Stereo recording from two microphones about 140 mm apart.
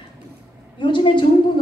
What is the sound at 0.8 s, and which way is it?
Speech, 35° left (ahead or behind).